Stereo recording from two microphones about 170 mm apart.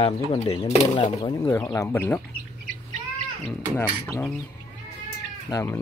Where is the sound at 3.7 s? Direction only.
10° left (ahead or behind).